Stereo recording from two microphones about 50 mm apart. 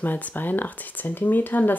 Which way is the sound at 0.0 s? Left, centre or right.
Left.